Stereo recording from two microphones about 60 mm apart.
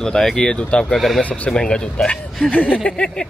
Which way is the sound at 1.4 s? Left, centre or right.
Centre.